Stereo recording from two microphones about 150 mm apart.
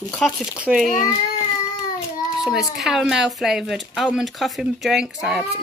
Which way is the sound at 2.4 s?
5° right (ahead or behind).